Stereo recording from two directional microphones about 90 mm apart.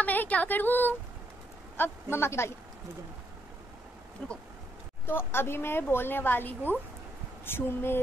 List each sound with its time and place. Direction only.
0.0 s speech: 20° left (ahead or behind)
5.0 s speech: 25° left (ahead or behind)